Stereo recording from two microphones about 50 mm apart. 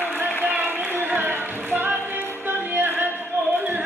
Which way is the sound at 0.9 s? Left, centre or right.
Right.